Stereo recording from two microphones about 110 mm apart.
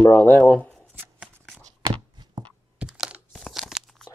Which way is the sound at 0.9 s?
5° right (ahead or behind).